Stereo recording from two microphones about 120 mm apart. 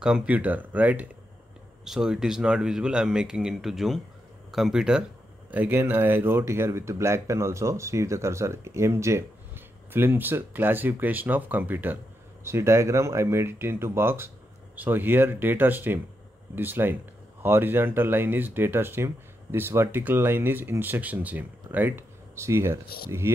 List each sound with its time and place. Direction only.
0.0 s speech: 10° right (ahead or behind)